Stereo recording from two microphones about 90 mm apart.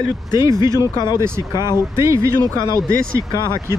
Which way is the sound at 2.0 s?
30° right (ahead or behind).